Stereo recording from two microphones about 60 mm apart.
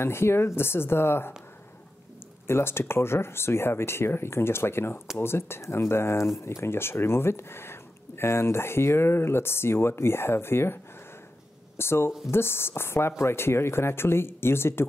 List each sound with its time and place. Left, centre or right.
0.0 s speech: left
2.4 s speech: left
11.8 s speech: left